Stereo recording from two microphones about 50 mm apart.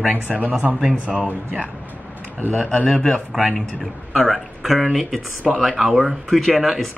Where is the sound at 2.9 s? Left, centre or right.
Centre.